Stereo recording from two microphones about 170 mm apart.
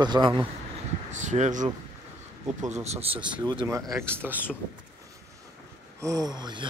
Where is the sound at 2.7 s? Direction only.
40° right (ahead or behind).